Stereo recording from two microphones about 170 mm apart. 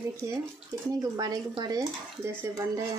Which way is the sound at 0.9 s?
20° right (ahead or behind).